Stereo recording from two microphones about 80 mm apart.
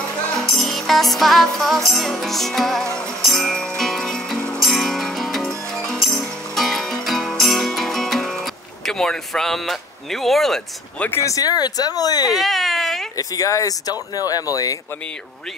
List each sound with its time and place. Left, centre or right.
0.5 s music: centre
8.8 s speech: centre
11.1 s speech: left
12.4 s baby cry: centre
13.2 s speech: left